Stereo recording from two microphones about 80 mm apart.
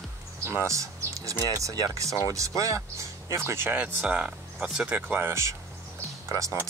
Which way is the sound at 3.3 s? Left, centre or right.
Right.